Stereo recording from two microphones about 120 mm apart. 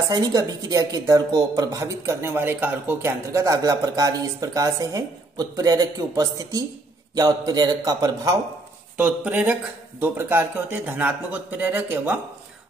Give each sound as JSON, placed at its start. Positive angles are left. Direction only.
{"t": 0.1, "sound": "a man's voice", "side_deg": -35}
{"t": 8.9, "sound": "speech", "side_deg": -10}